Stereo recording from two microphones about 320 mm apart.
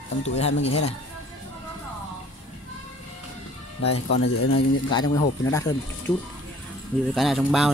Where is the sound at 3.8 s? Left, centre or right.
Left.